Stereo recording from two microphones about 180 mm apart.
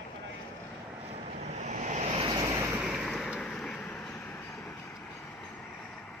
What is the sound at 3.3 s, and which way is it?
Vehicle, 5° left (ahead or behind).